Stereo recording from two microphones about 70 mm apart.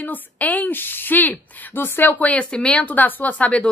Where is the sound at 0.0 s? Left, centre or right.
Left.